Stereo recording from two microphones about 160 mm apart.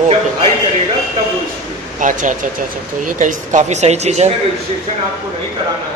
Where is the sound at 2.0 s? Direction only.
55° right (ahead or behind).